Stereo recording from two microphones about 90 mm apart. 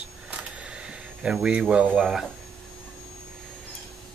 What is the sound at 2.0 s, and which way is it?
Speech, centre (ahead or behind).